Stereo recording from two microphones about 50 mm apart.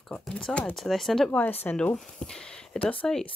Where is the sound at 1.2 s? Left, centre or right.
Left.